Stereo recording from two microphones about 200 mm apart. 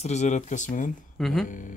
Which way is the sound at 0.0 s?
35° left (ahead or behind).